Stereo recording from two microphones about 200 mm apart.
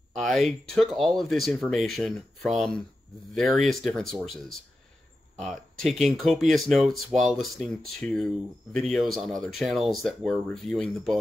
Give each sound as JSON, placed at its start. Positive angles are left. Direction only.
{"t": 0.1, "sound": "speech", "side_deg": 0}